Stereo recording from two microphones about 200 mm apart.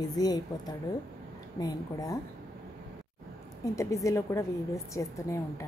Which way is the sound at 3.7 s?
15° left (ahead or behind).